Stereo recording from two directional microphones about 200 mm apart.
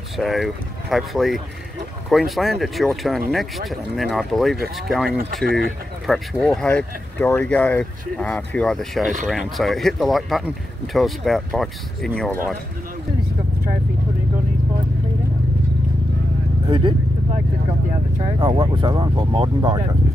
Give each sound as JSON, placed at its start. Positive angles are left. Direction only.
{"t": 0.2, "sound": "speech", "side_deg": 0}
{"t": 18.2, "sound": "speech", "side_deg": -25}